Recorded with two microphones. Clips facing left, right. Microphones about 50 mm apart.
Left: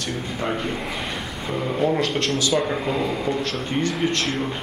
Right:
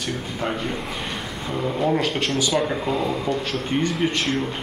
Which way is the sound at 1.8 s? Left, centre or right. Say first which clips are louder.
Left 1 dB; centre.